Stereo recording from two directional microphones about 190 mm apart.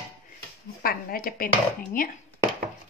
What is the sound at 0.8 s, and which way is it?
Speech, 50° left (ahead or behind).